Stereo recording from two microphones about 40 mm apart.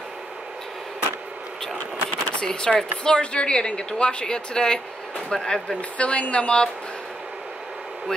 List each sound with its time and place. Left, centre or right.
2.4 s speech: centre
5.8 s speech: left